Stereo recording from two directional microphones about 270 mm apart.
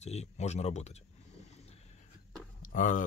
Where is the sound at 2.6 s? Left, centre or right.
Left.